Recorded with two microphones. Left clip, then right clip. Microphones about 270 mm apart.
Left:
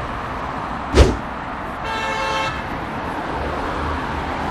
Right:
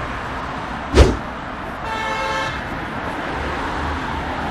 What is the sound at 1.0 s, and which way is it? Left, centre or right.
Vehicle, centre.